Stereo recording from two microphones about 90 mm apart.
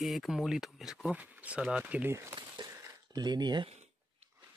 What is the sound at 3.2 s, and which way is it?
Speech, 50° right (ahead or behind).